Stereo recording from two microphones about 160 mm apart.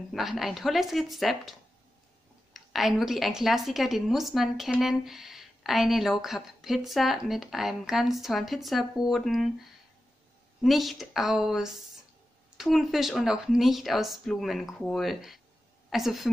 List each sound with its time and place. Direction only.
0.1 s a woman's voice: centre (ahead or behind)
10.6 s a woman's voice: centre (ahead or behind)